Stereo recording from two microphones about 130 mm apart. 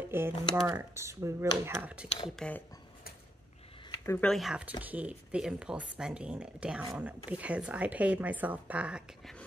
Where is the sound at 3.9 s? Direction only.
20° left (ahead or behind).